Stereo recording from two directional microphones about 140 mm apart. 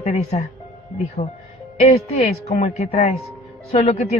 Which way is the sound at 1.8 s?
50° left (ahead or behind).